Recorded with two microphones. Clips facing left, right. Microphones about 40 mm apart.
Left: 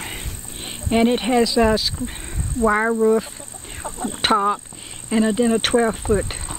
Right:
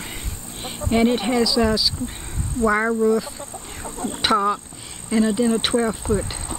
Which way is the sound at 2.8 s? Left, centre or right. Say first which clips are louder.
Left 2 dB; centre.